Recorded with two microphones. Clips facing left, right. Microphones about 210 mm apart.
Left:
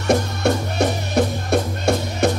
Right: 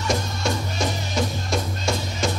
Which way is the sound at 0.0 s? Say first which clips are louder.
Left 7 dB; 60° left (ahead or behind).